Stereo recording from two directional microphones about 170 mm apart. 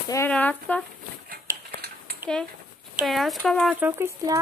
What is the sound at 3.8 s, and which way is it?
Speech, 15° right (ahead or behind).